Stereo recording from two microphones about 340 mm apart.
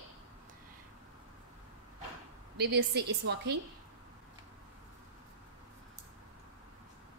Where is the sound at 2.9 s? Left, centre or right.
Right.